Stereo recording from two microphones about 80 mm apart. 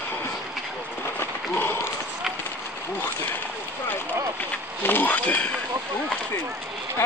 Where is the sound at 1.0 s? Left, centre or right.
Left.